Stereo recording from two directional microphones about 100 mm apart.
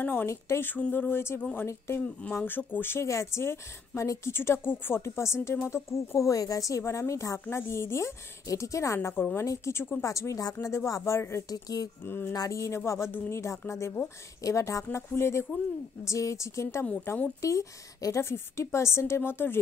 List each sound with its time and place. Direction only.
0.0 s speech: 20° left (ahead or behind); by 11.9 s 40° left (ahead or behind)
12.0 s speech: 20° left (ahead or behind)